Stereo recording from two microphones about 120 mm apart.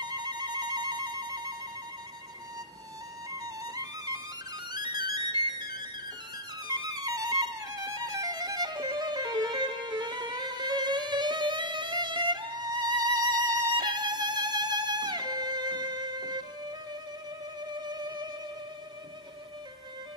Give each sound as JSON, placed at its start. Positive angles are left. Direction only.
{"t": 0.0, "sound": "music", "side_deg": -35}
{"t": 3.3, "sound": "music", "side_deg": -30}
{"t": 6.7, "sound": "music", "side_deg": -30}